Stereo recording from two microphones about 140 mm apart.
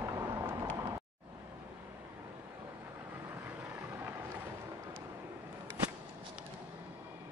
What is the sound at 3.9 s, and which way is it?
Vehicle, 15° right (ahead or behind).